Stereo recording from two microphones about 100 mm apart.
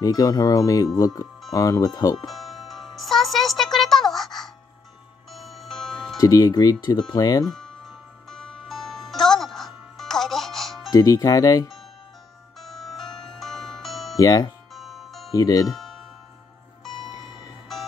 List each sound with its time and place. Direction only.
0.0 s speech: 40° left (ahead or behind)
2.3 s music: centre (ahead or behind)
6.1 s speech: 35° left (ahead or behind)
7.4 s music: 5° left (ahead or behind)
10.9 s speech: 35° left (ahead or behind)
12.5 s music: centre (ahead or behind)
14.1 s speech: 35° left (ahead or behind)
14.7 s music: centre (ahead or behind)
15.3 s speech: 40° left (ahead or behind)
15.7 s music: centre (ahead or behind)